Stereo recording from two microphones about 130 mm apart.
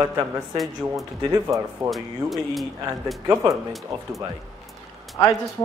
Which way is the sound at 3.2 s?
25° right (ahead or behind).